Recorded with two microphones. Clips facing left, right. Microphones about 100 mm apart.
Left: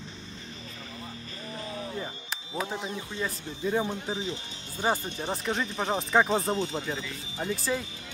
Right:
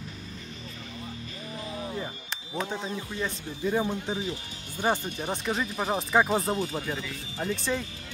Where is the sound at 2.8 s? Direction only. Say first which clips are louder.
Right 1 dB; 25° left (ahead or behind).